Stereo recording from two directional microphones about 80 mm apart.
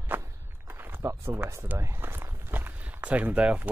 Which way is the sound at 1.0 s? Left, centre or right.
Right.